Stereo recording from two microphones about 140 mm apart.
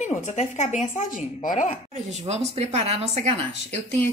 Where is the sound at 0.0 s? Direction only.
55° left (ahead or behind).